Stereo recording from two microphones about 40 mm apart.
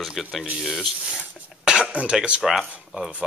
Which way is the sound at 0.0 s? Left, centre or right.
Centre.